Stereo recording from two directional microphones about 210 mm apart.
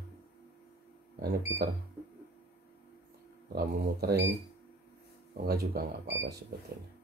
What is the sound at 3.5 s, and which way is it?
Speech, 45° right (ahead or behind).